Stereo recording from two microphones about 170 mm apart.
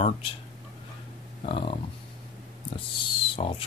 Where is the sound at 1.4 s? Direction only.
30° left (ahead or behind).